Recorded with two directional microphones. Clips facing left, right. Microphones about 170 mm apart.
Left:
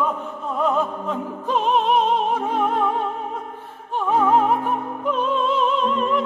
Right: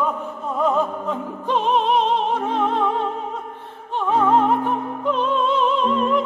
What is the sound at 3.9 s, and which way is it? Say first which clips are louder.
Opera: even; 5° left (ahead or behind).